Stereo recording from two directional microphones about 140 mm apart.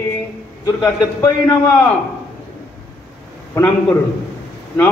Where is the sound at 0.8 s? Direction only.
20° left (ahead or behind).